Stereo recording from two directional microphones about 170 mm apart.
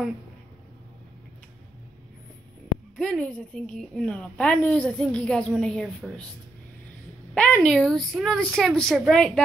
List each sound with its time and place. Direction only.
3.0 s a woman's voice: 5° left (ahead or behind)
7.3 s a woman's voice: 5° left (ahead or behind)